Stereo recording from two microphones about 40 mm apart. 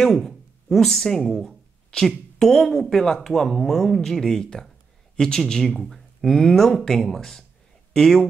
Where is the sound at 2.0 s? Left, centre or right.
Centre.